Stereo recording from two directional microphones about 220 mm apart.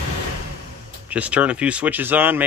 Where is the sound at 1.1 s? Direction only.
5° right (ahead or behind).